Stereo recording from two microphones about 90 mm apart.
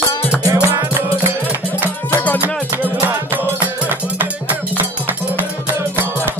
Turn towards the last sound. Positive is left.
turn(degrees=-20)  # may be behind; listen again after turning